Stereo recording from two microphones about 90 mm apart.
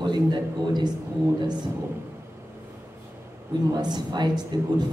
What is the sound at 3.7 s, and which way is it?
Speech, 50° right (ahead or behind).